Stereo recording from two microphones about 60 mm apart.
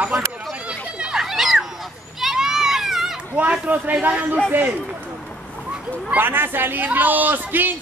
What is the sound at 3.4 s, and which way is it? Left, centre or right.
Speech, right.